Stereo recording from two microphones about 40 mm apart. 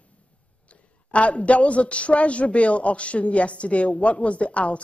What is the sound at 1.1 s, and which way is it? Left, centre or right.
A man's voice, left.